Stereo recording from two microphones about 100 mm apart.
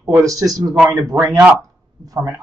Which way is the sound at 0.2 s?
35° right (ahead or behind).